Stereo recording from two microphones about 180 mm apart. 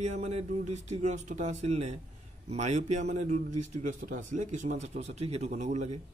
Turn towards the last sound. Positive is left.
turn(degrees=-40)  # may be behind; listen again after turning